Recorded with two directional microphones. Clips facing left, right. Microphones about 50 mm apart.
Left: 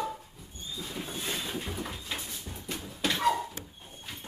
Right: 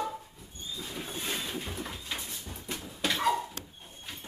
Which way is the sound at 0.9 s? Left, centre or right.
Centre.